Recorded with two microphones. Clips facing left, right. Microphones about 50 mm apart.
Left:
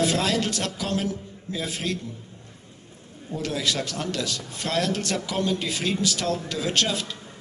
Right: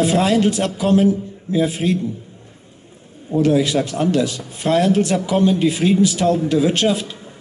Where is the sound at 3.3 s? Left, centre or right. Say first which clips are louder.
Right 12 dB; centre.